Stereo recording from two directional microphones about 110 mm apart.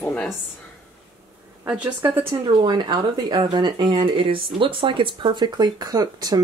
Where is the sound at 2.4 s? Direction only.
45° right (ahead or behind).